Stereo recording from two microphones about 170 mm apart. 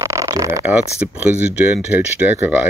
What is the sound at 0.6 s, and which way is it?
Speech, 10° right (ahead or behind).